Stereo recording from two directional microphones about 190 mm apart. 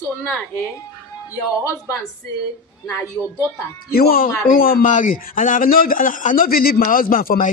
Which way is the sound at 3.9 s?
55° left (ahead or behind).